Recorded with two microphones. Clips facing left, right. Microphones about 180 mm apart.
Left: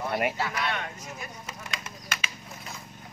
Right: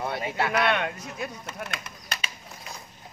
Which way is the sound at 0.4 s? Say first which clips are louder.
Right 6 dB; 65° right (ahead or behind).